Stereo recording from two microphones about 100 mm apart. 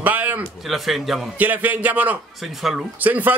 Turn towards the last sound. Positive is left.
turn(degrees=-15)  # may be behind; listen again after turning